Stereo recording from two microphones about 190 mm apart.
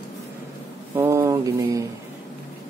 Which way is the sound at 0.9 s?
15° right (ahead or behind).